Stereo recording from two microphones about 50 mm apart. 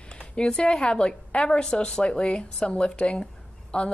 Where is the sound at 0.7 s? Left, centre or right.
Centre.